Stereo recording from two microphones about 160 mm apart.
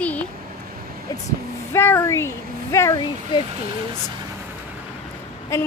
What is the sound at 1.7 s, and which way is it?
A woman's voice, 15° left (ahead or behind).